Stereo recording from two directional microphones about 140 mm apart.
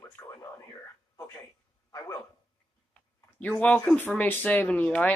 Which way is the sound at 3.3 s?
10° left (ahead or behind).